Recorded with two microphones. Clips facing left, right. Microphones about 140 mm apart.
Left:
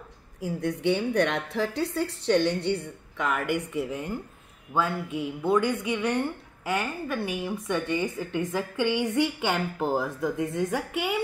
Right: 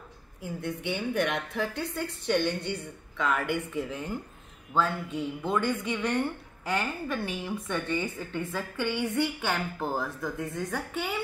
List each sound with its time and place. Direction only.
0.4 s a woman's voice: 90° left
1.2 s a woman's voice: 30° left (ahead or behind)
3.2 s a woman's voice: 10° left (ahead or behind)